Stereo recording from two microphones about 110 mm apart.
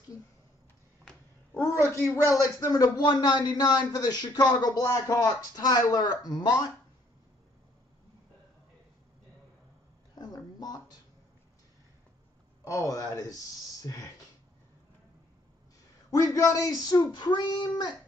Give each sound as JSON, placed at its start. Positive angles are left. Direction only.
{"t": 1.8, "sound": "a woman's voice", "side_deg": -25}
{"t": 2.2, "sound": "a man's voice", "side_deg": 30}
{"t": 10.1, "sound": "a sound", "side_deg": 35}
{"t": 12.6, "sound": "a man's voice", "side_deg": 30}
{"t": 16.1, "sound": "a man's voice", "side_deg": 30}